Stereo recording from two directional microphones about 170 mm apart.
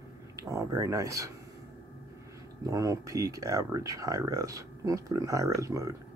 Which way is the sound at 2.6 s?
20° right (ahead or behind).